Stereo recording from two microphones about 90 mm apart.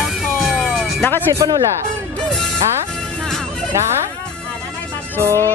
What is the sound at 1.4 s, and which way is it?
Speech, 50° right (ahead or behind).